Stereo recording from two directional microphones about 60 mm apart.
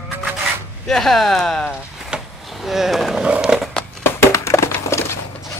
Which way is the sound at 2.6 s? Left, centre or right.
Centre.